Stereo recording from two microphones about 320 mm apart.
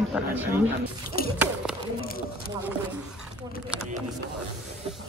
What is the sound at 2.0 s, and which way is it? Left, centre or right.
Speech, left.